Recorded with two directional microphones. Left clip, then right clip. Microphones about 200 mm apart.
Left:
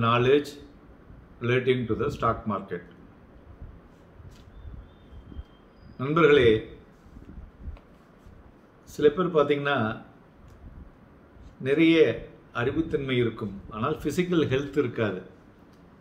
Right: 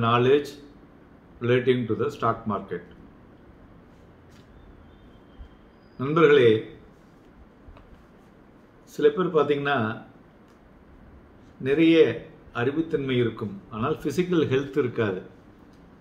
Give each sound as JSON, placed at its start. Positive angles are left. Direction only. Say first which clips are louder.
{"t": 0.0, "sound": "a man's voice", "louder": "right 1 dB", "side_deg": 10}
{"t": 5.9, "sound": "a man's voice", "louder": "right 2 dB", "side_deg": 10}
{"t": 8.9, "sound": "a man's voice", "louder": "right 1 dB", "side_deg": 10}
{"t": 11.6, "sound": "a man's voice", "louder": "right 2 dB", "side_deg": 10}